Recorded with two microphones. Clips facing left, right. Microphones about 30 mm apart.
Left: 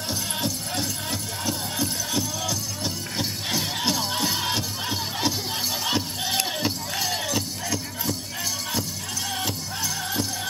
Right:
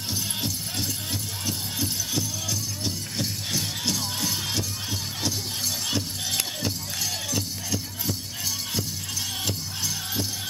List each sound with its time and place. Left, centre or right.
0.1 s music: centre
3.2 s music: centre